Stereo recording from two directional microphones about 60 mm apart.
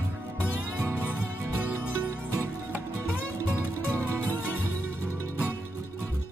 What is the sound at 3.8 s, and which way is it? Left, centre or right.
Music, right.